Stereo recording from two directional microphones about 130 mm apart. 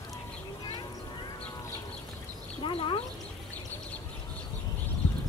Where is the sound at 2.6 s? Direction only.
45° left (ahead or behind).